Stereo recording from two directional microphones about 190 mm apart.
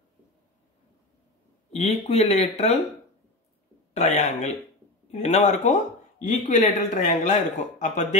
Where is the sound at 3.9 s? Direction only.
35° left (ahead or behind).